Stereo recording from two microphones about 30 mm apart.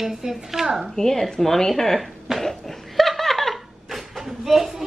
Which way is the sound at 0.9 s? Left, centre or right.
Centre.